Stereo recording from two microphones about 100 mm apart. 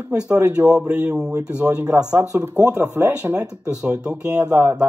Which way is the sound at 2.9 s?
10° right (ahead or behind).